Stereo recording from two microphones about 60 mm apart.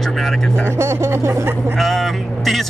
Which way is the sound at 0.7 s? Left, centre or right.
Right.